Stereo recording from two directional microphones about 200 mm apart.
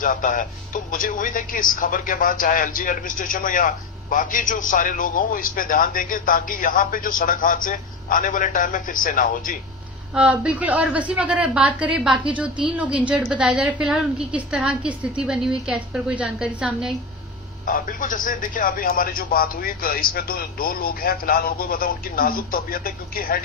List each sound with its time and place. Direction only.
0.0 s speech: 40° left (ahead or behind)
10.1 s a woman's voice: 5° right (ahead or behind)
17.6 s speech: 45° left (ahead or behind)